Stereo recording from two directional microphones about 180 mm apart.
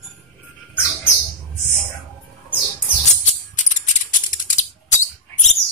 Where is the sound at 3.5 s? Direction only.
45° left (ahead or behind).